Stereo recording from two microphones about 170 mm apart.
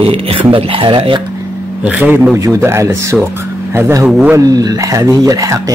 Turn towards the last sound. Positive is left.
turn(degrees=-20)  # may be behind; listen again after turning